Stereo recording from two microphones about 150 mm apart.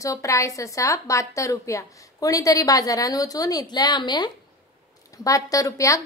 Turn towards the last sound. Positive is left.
turn(degrees=20)  # may be behind; listen again after turning